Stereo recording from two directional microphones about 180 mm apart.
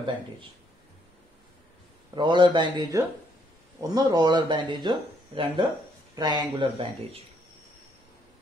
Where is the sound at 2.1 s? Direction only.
25° right (ahead or behind).